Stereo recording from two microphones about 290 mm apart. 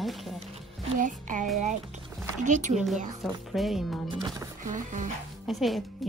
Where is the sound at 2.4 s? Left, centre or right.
Right.